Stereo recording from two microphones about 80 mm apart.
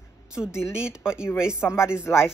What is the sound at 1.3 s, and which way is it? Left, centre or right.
Speech, left.